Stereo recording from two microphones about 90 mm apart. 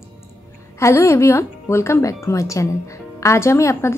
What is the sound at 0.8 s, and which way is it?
A woman's voice, 30° left (ahead or behind).